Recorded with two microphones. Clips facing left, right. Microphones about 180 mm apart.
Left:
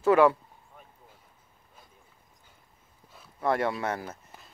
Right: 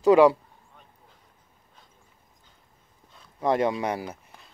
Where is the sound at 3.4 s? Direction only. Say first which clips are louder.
Right 4 dB; 20° right (ahead or behind).